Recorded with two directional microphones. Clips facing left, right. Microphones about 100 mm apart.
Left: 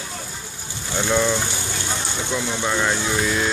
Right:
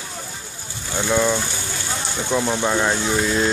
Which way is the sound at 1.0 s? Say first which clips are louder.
Right 1 dB; 10° right (ahead or behind).